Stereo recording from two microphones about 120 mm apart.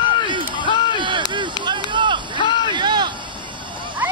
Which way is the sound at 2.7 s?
40° right (ahead or behind).